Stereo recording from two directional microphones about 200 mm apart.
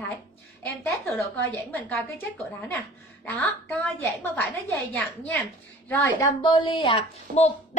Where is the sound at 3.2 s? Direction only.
10° left (ahead or behind).